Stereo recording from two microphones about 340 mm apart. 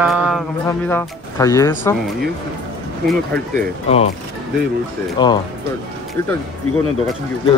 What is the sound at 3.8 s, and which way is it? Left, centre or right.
Speech, centre.